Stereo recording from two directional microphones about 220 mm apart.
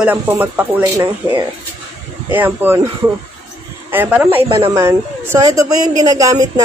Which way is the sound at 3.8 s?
10° right (ahead or behind).